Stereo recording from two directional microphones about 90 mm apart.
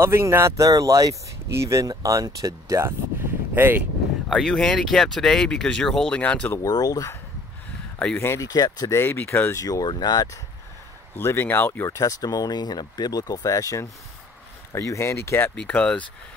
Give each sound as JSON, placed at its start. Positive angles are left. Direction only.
{"t": 0.0, "sound": "speech", "side_deg": -30}
{"t": 1.9, "sound": "speech", "side_deg": -40}
{"t": 3.5, "sound": "speech", "side_deg": -25}
{"t": 4.3, "sound": "speech", "side_deg": 5}
{"t": 6.7, "sound": "speech", "side_deg": 45}
{"t": 8.2, "sound": "speech", "side_deg": 25}
{"t": 8.5, "sound": "speech", "side_deg": 45}
{"t": 8.9, "sound": "speech", "side_deg": 25}
{"t": 9.6, "sound": "speech", "side_deg": 40}
{"t": 11.1, "sound": "speech", "side_deg": 25}
{"t": 12.0, "sound": "speech", "side_deg": 40}
{"t": 15.5, "sound": "speech", "side_deg": 15}